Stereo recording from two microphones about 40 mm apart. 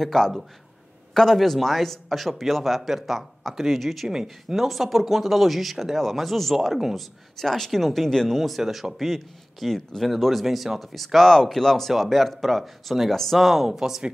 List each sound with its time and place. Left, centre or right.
0.0 s a man's voice: centre
4.1 s a man's voice: centre
7.3 s a man's voice: centre
11.1 s a man's voice: centre
13.7 s speech: centre